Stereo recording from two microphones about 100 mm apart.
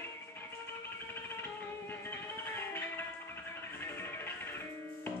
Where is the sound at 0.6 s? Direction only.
20° left (ahead or behind).